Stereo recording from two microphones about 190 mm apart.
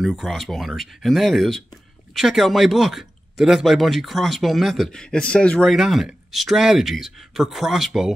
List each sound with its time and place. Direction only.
0.0 s speech: centre (ahead or behind)